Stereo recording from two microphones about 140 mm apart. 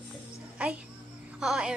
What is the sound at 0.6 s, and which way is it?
A child's voice, 10° right (ahead or behind).